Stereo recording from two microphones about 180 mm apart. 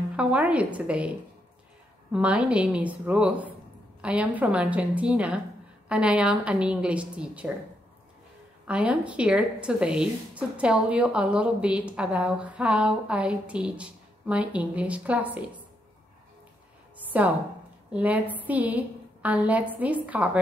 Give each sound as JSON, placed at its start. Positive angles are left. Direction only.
{"t": 0.1, "sound": "a woman's voice", "side_deg": -5}
{"t": 2.1, "sound": "a woman's voice", "side_deg": -5}
{"t": 8.6, "sound": "a woman's voice", "side_deg": -5}
{"t": 17.0, "sound": "a sound", "side_deg": -10}
{"t": 17.9, "sound": "a woman's voice", "side_deg": -10}